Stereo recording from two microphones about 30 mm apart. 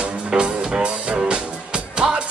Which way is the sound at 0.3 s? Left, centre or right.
Right.